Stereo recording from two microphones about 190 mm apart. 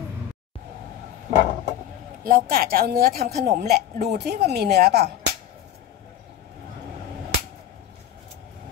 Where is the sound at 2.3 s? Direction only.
50° right (ahead or behind).